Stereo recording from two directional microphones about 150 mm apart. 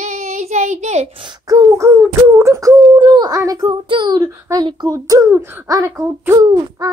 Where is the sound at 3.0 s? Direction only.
30° right (ahead or behind).